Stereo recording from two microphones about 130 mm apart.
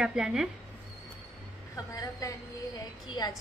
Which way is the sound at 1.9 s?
25° left (ahead or behind).